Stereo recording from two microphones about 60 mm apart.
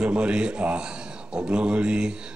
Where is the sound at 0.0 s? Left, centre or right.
Centre.